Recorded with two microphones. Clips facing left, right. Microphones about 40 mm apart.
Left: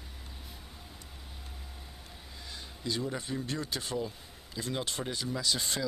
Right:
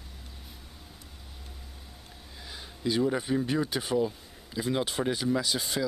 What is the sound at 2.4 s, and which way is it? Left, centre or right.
Speech, centre.